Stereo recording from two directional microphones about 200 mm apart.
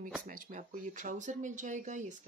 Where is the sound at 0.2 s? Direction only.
45° right (ahead or behind).